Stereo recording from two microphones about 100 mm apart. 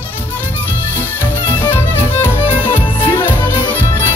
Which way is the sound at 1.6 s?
20° left (ahead or behind).